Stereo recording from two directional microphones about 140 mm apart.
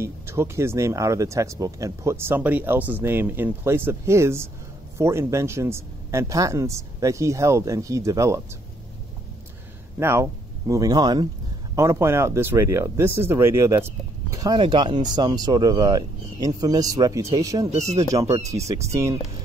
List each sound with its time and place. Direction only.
0.0 s speech: 20° right (ahead or behind)
9.9 s speech: 20° right (ahead or behind)
17.6 s speech: 55° right (ahead or behind)
18.5 s speech: 20° right (ahead or behind)